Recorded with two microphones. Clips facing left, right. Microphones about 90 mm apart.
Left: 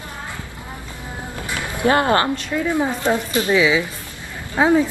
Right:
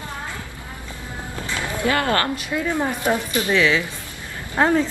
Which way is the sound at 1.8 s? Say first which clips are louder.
Left 5 dB; 25° left (ahead or behind).